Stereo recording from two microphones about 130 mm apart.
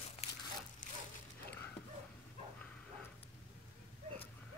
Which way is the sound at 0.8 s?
90° left.